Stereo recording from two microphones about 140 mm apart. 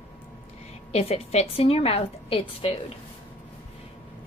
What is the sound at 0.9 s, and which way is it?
A woman's voice, 50° left (ahead or behind).